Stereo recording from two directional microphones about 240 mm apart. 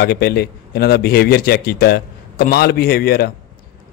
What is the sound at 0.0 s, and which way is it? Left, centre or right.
A man's voice, left.